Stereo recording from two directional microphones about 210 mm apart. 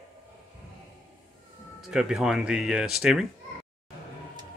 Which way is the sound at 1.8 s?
5° right (ahead or behind).